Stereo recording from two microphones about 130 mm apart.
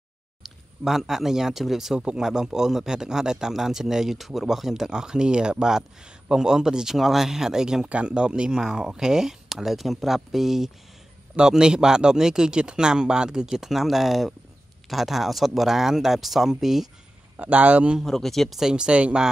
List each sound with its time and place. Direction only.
0.4 s speech: centre (ahead or behind)